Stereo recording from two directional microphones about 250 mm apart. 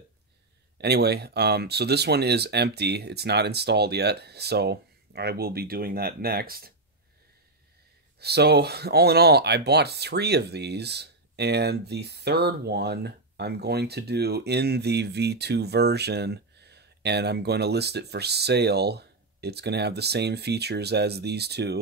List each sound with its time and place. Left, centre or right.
0.7 s speech: right
8.2 s speech: right